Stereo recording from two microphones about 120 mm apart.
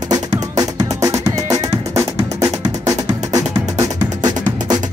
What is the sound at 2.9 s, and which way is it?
Music, 30° right (ahead or behind).